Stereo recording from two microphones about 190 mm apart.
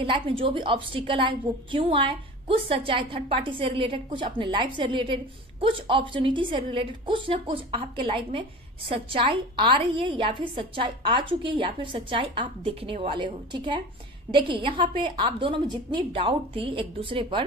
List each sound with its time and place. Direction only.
0.0 s a woman's voice: 30° right (ahead or behind)